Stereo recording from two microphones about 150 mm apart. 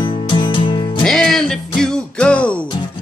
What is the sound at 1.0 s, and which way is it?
Music, 5° left (ahead or behind).